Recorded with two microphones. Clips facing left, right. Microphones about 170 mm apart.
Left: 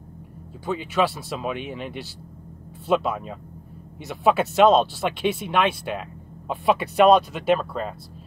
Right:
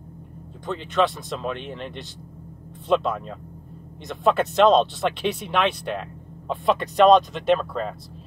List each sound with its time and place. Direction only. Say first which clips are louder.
0.7 s speech: even; 5° left (ahead or behind)